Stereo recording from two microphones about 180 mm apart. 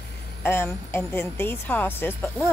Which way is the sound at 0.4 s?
10° left (ahead or behind).